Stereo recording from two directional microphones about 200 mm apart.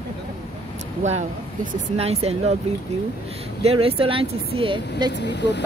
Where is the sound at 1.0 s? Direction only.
35° right (ahead or behind).